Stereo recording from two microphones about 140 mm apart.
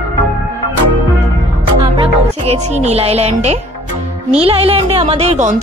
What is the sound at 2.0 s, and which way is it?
Speech, 45° right (ahead or behind).